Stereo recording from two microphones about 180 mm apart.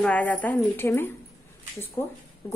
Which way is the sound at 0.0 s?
10° left (ahead or behind).